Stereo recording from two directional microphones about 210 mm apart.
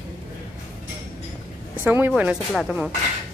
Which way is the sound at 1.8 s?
10° right (ahead or behind).